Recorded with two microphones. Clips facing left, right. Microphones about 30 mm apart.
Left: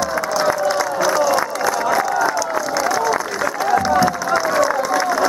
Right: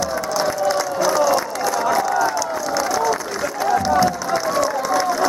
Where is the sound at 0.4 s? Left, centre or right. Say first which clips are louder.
Left 2 dB; centre.